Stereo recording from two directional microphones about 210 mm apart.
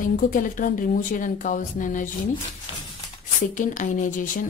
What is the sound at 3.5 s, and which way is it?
Speech, 40° left (ahead or behind).